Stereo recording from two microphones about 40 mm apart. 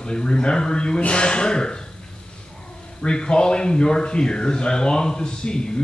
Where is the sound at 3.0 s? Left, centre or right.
Left.